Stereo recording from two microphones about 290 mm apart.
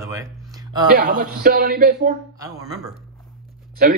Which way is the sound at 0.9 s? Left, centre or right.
Right.